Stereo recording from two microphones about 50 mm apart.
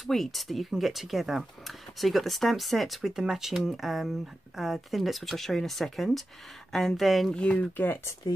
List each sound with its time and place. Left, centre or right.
0.0 s speech: centre
7.3 s speech: left
7.7 s speech: left